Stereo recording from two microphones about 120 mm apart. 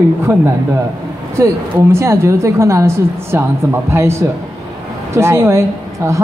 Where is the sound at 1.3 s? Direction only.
25° right (ahead or behind).